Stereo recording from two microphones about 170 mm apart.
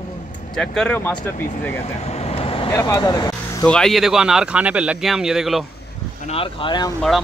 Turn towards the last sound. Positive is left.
turn(degrees=0)  # may be behind; listen again after turning